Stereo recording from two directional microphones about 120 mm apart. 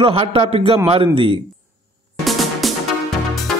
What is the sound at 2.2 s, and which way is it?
Music, centre (ahead or behind).